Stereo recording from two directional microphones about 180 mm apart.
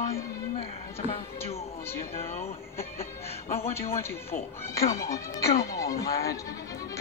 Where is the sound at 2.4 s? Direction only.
15° left (ahead or behind).